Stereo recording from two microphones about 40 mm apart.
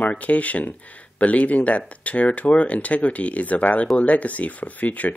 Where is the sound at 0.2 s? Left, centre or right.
Left.